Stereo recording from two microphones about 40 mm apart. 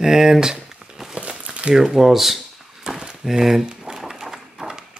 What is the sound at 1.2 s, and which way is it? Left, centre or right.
Crumpling, right.